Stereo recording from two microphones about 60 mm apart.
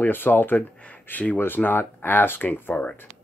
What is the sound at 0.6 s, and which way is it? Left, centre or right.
Speech, left.